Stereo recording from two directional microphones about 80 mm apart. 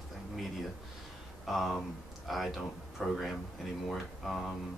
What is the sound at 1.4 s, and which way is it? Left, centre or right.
Speech, centre.